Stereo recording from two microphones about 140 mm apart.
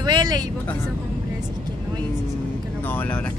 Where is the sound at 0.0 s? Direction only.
30° right (ahead or behind).